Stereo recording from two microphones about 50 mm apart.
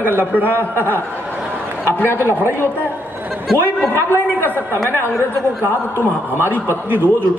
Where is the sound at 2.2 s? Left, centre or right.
Right.